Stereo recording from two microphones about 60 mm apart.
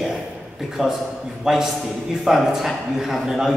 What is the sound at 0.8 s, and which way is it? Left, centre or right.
A man's voice, centre.